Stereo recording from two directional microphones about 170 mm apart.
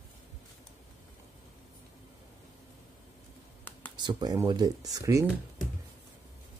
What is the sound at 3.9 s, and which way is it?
Speech, 25° right (ahead or behind).